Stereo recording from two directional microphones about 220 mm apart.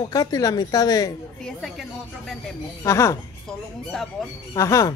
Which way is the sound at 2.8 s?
15° left (ahead or behind).